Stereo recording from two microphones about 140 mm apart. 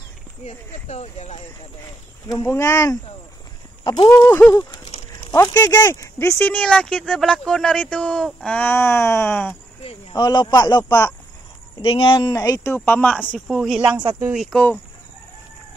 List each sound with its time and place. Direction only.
0.4 s speech: 50° left (ahead or behind)
2.4 s speech: 20° left (ahead or behind)
3.8 s a sound: 35° left (ahead or behind)
4.1 s speech: 20° left (ahead or behind)
10.1 s a man's voice: 30° left (ahead or behind)
10.9 s speech: 15° left (ahead or behind)
11.8 s a man's voice: 40° left (ahead or behind)
12.3 s speech: 25° left (ahead or behind)
13.1 s speech: 5° right (ahead or behind)